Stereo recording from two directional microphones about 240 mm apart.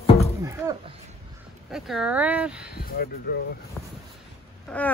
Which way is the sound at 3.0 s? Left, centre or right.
Left.